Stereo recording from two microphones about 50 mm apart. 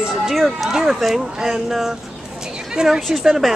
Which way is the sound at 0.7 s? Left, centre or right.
Centre.